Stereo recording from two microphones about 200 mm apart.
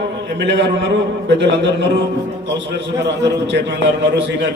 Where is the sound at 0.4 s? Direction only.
60° right (ahead or behind).